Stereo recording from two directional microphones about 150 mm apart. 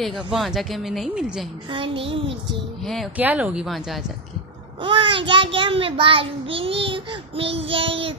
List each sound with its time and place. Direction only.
0.0 s speech: centre (ahead or behind)
1.7 s child singing: 35° right (ahead or behind)
2.8 s speech: centre (ahead or behind)
3.2 s speech: 10° right (ahead or behind)
4.8 s child singing: 35° right (ahead or behind)